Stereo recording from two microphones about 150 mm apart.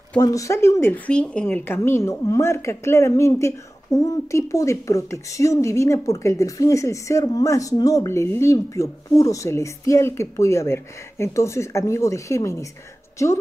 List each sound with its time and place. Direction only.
0.2 s speech: 20° left (ahead or behind)